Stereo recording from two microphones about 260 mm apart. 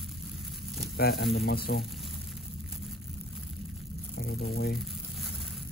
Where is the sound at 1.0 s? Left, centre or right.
Left.